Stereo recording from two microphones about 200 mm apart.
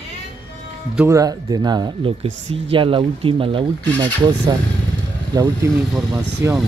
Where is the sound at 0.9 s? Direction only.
15° right (ahead or behind).